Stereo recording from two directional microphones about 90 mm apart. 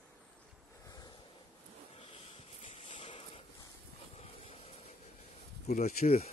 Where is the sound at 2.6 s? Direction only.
70° left (ahead or behind).